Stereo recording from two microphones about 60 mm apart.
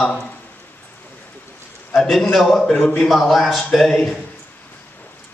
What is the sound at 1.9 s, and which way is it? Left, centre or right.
A man's voice, centre.